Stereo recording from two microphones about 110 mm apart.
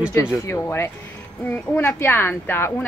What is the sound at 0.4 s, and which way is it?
Speech, 25° left (ahead or behind).